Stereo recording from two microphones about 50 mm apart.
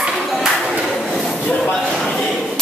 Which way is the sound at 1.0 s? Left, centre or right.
Centre.